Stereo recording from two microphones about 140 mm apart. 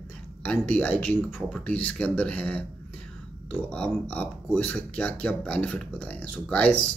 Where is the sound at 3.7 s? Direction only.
10° left (ahead or behind).